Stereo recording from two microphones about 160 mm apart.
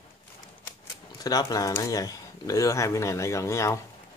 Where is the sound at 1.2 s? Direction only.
25° left (ahead or behind).